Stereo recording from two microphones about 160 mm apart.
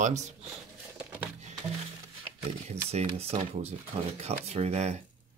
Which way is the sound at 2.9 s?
40° right (ahead or behind).